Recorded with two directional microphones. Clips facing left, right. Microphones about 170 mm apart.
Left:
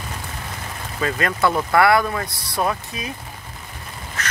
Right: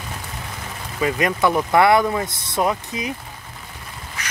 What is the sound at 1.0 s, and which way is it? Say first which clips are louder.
Speech: right 2 dB; 15° right (ahead or behind).